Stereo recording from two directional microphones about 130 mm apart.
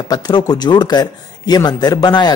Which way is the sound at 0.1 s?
30° left (ahead or behind).